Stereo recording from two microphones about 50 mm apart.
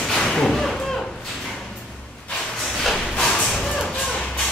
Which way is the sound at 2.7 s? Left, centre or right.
Centre.